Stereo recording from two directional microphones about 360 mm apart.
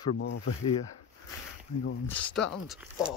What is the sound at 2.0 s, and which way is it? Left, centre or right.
Speech, centre.